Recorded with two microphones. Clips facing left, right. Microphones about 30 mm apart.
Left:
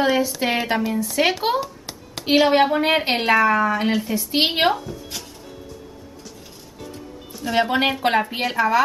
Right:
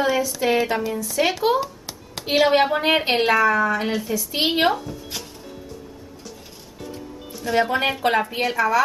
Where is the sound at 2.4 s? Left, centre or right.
Centre.